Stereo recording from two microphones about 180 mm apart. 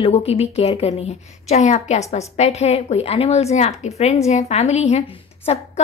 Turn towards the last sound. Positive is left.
turn(degrees=35)  # may be behind; listen again after turning